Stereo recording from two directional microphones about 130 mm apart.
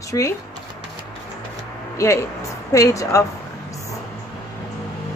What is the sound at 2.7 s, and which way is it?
Speech, 25° left (ahead or behind).